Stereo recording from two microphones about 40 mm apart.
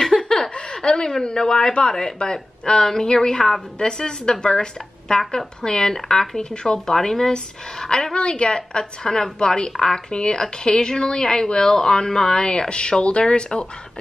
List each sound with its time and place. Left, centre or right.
0.0 s laughter: centre
1.2 s speech: centre
3.8 s speech: centre